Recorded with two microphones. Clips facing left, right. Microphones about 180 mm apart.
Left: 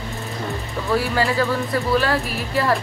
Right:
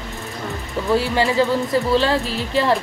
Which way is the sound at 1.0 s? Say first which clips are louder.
Right 2 dB; 25° right (ahead or behind).